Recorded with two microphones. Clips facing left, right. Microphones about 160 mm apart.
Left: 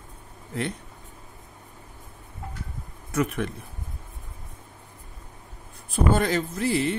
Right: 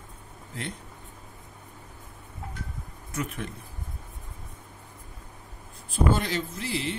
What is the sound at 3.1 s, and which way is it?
Speech, 70° left (ahead or behind).